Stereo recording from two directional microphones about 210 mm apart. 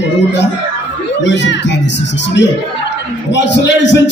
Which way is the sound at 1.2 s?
55° left (ahead or behind).